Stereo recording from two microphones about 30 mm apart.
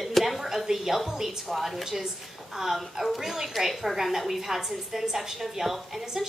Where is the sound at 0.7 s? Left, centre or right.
Centre.